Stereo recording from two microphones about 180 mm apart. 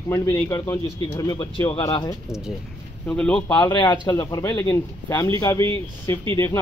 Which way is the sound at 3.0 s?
5° left (ahead or behind).